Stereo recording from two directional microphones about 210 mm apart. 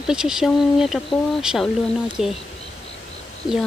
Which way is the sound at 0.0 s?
5° right (ahead or behind).